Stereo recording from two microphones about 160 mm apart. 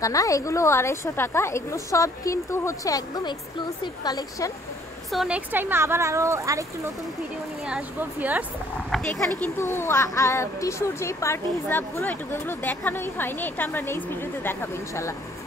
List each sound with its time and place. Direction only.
0.0 s a woman's voice: 20° left (ahead or behind)
5.1 s a woman's voice: centre (ahead or behind)
5.5 s speech: 10° right (ahead or behind)
7.6 s speech: 10° right (ahead or behind)
9.4 s a child's voice: 15° left (ahead or behind)